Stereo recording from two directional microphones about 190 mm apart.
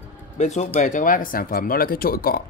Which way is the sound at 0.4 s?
35° left (ahead or behind).